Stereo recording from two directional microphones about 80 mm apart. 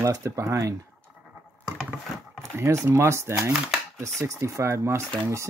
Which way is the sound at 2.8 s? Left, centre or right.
Right.